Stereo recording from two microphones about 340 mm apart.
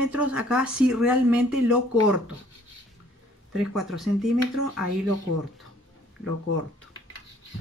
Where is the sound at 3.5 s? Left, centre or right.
Centre.